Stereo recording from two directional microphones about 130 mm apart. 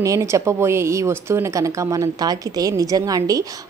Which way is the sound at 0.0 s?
25° right (ahead or behind).